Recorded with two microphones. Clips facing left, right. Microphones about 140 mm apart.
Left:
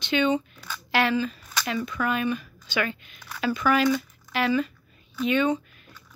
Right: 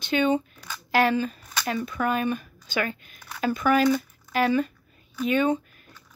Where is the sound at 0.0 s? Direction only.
45° right (ahead or behind).